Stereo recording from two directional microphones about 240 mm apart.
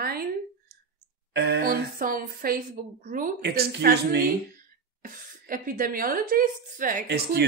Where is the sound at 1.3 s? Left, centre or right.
Right.